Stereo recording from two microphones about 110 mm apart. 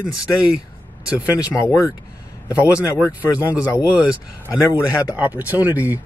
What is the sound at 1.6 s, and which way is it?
Speech, 30° left (ahead or behind).